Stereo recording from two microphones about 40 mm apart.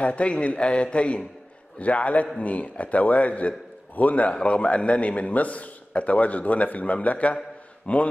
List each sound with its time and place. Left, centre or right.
0.0 s a man's voice: left